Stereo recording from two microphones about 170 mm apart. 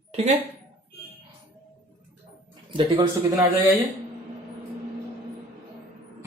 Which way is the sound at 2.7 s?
30° right (ahead or behind).